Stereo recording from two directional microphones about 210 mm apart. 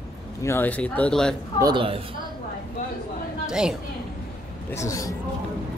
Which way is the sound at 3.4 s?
5° right (ahead or behind).